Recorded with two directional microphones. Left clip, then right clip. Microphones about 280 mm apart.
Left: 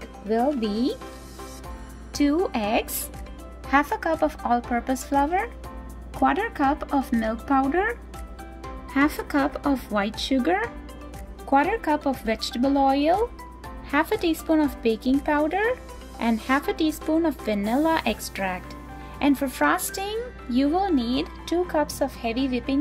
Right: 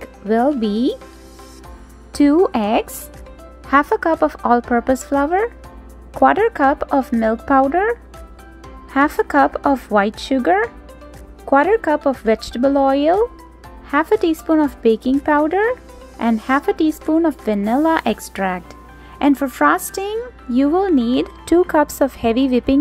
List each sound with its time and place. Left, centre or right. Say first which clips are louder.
0.6 s speech: right 7 dB; centre
2.4 s speech: right 7 dB; centre